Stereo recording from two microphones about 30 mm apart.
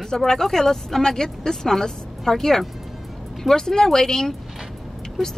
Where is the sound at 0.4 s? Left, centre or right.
Centre.